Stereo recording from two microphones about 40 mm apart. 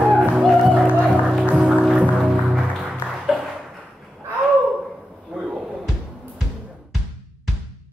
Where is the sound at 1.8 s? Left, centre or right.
Right.